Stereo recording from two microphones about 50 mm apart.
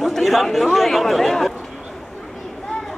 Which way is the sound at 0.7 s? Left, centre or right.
Centre.